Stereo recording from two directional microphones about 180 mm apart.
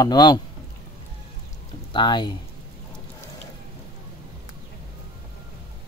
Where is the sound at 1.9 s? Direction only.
25° left (ahead or behind).